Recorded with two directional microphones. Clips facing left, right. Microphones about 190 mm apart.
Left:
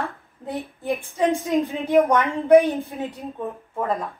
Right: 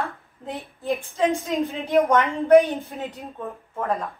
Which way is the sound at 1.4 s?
15° left (ahead or behind).